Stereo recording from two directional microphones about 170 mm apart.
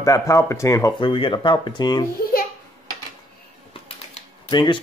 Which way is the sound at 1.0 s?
30° left (ahead or behind).